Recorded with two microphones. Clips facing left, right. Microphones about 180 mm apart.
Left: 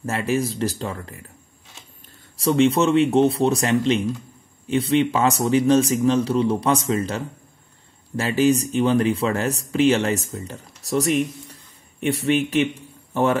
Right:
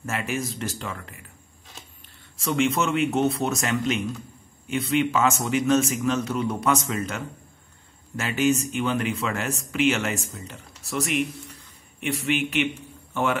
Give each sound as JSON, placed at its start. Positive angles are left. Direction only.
{"t": 0.0, "sound": "speech", "side_deg": 35}
{"t": 2.3, "sound": "a man's voice", "side_deg": 35}